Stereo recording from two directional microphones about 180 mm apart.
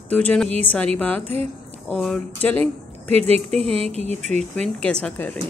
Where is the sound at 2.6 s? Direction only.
35° right (ahead or behind).